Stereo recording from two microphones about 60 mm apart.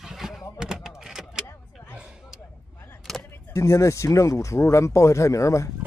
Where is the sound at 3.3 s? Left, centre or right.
Left.